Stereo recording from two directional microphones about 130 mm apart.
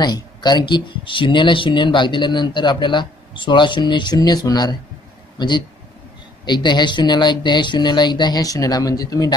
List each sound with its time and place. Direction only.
0.0 s speech: 35° left (ahead or behind)
6.4 s speech: 35° left (ahead or behind)